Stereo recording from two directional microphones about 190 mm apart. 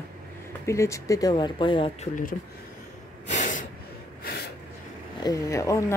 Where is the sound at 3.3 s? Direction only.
40° left (ahead or behind).